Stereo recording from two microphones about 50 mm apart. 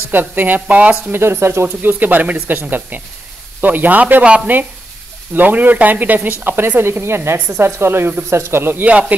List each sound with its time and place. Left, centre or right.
0.1 s speech: right
1.1 s speech: right
1.8 s speech: right
6.8 s speech: right